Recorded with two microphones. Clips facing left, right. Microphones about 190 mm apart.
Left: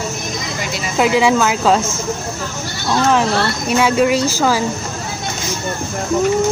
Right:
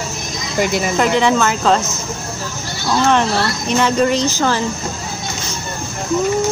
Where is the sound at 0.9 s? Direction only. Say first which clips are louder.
Left 3 dB; 5° left (ahead or behind).